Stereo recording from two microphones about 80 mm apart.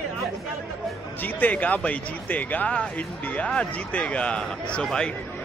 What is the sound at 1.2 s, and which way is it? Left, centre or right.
A man's voice, left.